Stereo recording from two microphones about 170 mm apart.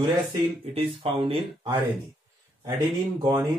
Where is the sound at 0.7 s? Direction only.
35° right (ahead or behind).